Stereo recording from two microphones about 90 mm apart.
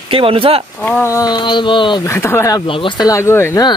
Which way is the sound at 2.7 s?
70° left (ahead or behind).